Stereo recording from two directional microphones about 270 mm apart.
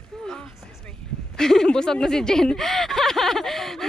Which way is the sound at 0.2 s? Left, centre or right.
Centre.